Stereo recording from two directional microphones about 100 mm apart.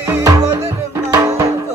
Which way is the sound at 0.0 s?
30° right (ahead or behind).